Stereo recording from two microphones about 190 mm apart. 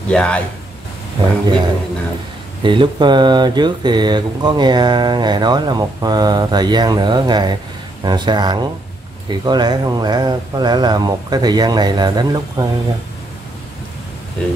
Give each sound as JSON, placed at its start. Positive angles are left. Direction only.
{"t": 0.1, "sound": "speech", "side_deg": 5}
{"t": 1.4, "sound": "speech", "side_deg": -25}